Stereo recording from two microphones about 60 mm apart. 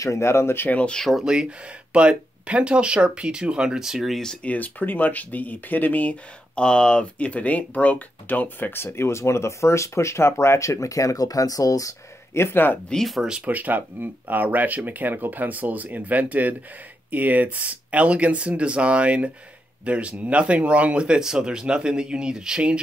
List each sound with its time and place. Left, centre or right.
0.0 s speech: left
0.7 s speech: left
0.9 s speech: centre
1.2 s speech: centre
4.2 s speech: centre
4.5 s speech: left
8.8 s speech: left
12.4 s speech: left
12.9 s speech: centre
13.5 s speech: right